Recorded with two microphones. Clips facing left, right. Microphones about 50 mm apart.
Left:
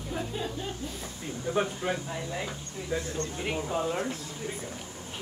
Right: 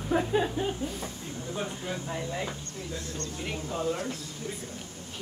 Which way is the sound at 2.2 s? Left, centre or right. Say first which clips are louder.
Right 1 dB; centre.